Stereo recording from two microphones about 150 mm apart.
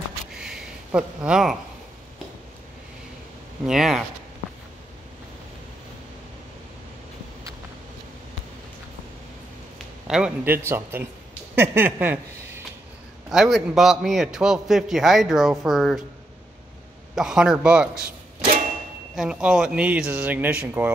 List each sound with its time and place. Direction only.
0.4 s a sound: 5° right (ahead or behind)
3.6 s a man's voice: 5° right (ahead or behind)
10.0 s speech: 5° right (ahead or behind)
11.5 s a sound: 15° right (ahead or behind)
13.3 s a man's voice: centre (ahead or behind)
17.1 s a man's voice: 5° right (ahead or behind)
19.1 s speech: 5° right (ahead or behind)